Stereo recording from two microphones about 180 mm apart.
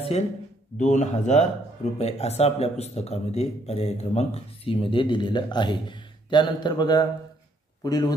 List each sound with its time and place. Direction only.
0.7 s a man's voice: 40° left (ahead or behind); by 8.1 s 20° left (ahead or behind)